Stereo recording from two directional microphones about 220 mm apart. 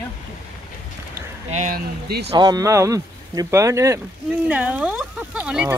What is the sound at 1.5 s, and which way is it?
Speech, 35° right (ahead or behind).